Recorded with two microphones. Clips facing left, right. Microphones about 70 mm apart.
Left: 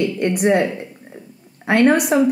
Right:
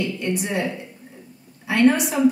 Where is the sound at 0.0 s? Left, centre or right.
Left.